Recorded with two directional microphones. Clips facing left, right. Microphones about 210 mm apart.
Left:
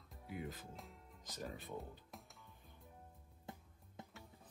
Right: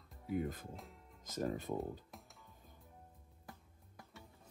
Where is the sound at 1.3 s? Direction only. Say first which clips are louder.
Right 9 dB; 45° right (ahead or behind).